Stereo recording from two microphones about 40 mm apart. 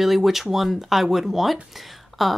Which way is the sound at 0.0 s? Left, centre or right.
Centre.